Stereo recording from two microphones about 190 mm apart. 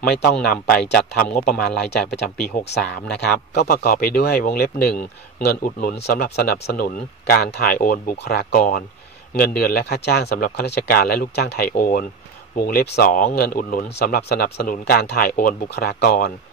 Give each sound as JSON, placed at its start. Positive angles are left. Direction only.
{"t": 0.1, "sound": "speech", "side_deg": 55}
{"t": 3.5, "sound": "speech", "side_deg": 55}